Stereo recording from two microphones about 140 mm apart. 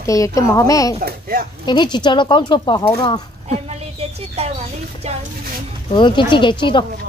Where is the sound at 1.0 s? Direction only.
90° right.